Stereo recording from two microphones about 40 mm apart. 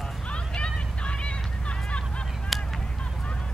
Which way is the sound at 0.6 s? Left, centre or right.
Left.